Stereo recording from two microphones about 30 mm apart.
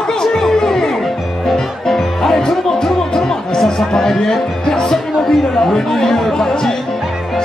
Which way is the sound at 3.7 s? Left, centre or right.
Centre.